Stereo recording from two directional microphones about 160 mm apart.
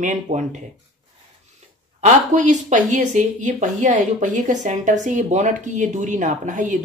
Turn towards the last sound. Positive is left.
turn(degrees=-50)  # may be behind; listen again after turning